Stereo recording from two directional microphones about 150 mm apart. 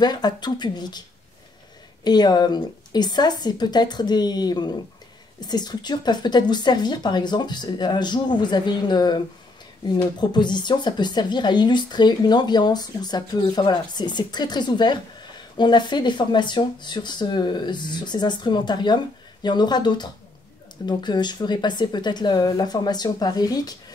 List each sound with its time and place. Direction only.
0.0 s speech: 25° left (ahead or behind)
2.0 s speech: 30° left (ahead or behind)